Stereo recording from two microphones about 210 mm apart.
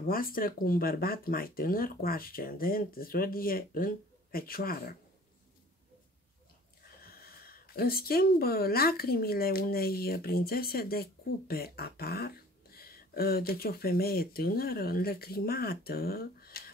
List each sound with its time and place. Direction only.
0.1 s speech: 45° left (ahead or behind)
7.0 s speech: 45° left (ahead or behind)